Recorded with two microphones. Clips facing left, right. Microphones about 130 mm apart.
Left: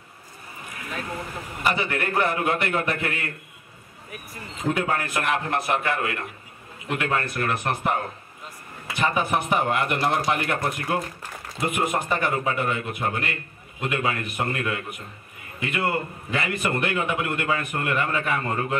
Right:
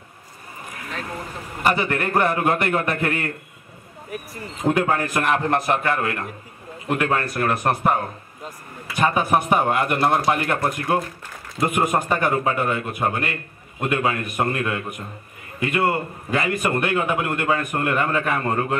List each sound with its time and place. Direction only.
1.6 s a man's voice: 45° right (ahead or behind)
4.6 s a man's voice: 45° right (ahead or behind)
8.9 s a man's voice: 45° right (ahead or behind)